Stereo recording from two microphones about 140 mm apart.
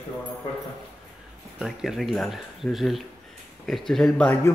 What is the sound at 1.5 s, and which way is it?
Speech, centre (ahead or behind).